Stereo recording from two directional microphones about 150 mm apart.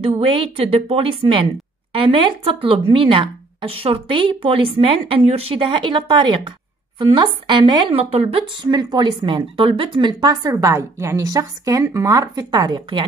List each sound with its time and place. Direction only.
0.0 s a woman's voice: 40° right (ahead or behind)